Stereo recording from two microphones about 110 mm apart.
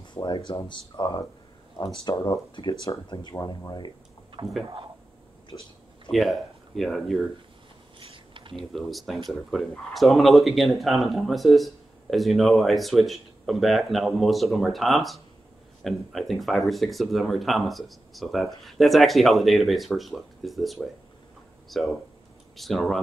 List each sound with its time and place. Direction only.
0.0 s speech: 45° left (ahead or behind)
4.4 s speech: 45° right (ahead or behind)
6.0 s speech: centre (ahead or behind)
8.0 s a sound: 50° right (ahead or behind)
8.5 s speech: centre (ahead or behind)